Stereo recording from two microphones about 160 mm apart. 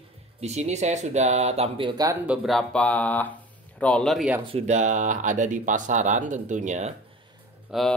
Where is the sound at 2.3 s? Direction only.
Centre (ahead or behind).